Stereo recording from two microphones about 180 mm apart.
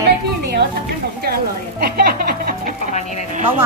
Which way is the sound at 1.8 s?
55° right (ahead or behind).